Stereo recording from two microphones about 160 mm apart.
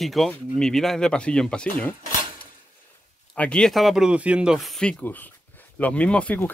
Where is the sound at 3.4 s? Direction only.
5° left (ahead or behind).